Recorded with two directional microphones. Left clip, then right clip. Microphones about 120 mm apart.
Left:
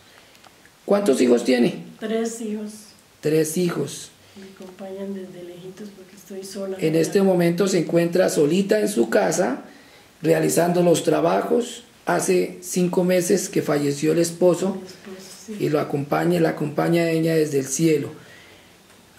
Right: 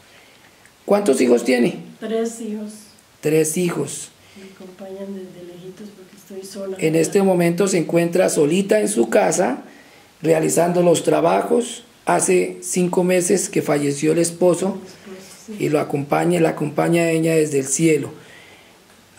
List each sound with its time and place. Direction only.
0.8 s a woman's voice: 10° right (ahead or behind)
3.2 s speech: 10° right (ahead or behind)
6.4 s speech: 5° left (ahead or behind)
6.8 s speech: 10° right (ahead or behind)